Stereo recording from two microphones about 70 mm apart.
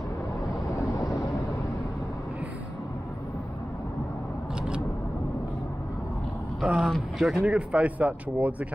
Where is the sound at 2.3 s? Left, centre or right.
Right.